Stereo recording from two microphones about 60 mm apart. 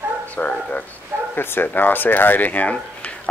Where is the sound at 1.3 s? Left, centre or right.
Left.